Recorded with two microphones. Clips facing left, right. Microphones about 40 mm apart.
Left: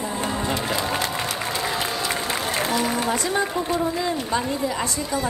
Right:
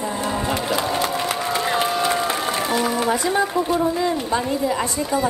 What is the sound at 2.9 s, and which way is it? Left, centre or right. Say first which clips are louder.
A woman's voice: right 3 dB; centre.